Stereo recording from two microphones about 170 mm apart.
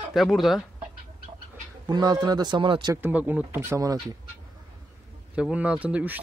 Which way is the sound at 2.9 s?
10° right (ahead or behind).